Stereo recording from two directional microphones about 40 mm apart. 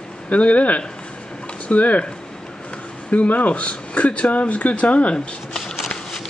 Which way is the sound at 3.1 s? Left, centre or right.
Left.